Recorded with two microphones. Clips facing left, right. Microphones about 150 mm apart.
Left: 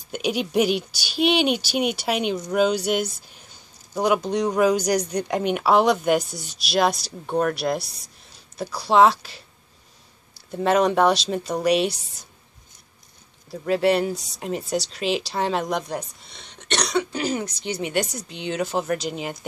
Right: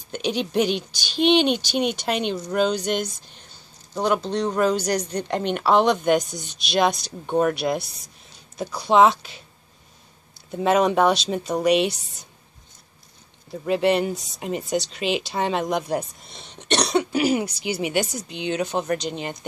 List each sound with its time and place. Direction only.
0.1 s speech: 10° left (ahead or behind)
13.5 s speech: centre (ahead or behind)
16.3 s cough: 25° right (ahead or behind)
17.1 s speech: 10° right (ahead or behind)